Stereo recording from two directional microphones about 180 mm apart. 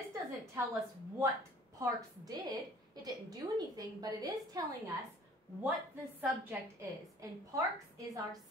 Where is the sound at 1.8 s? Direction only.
20° right (ahead or behind).